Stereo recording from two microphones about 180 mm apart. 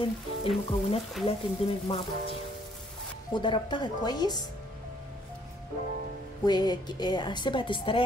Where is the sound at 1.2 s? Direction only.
Centre (ahead or behind).